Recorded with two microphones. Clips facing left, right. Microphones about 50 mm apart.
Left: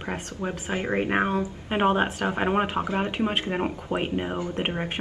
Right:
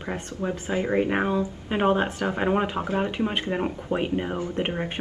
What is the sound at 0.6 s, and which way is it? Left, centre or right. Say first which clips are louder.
Speech: right 3 dB; left.